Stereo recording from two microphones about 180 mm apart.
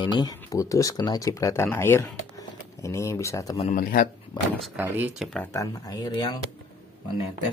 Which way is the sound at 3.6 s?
45° left (ahead or behind).